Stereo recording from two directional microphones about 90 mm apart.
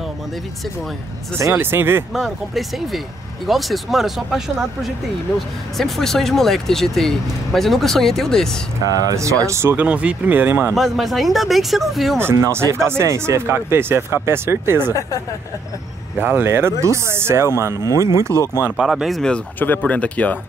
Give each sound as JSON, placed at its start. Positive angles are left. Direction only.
{"t": 1.5, "sound": "speech", "side_deg": -25}
{"t": 2.1, "sound": "speech", "side_deg": 0}
{"t": 8.8, "sound": "speech", "side_deg": -45}
{"t": 9.8, "sound": "speech", "side_deg": -15}
{"t": 10.7, "sound": "speech", "side_deg": 0}
{"t": 12.2, "sound": "speech", "side_deg": -30}
{"t": 16.2, "sound": "speech", "side_deg": -20}
{"t": 18.8, "sound": "speech", "side_deg": -5}
{"t": 19.6, "sound": "speech", "side_deg": 20}